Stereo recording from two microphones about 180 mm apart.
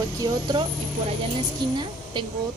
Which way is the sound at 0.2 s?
25° right (ahead or behind).